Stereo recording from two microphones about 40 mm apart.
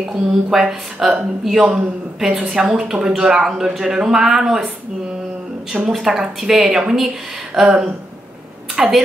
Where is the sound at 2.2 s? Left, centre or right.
Right.